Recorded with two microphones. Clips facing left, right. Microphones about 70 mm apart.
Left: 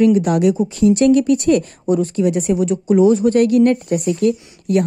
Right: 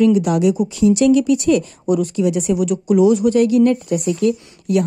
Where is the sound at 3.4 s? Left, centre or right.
Left.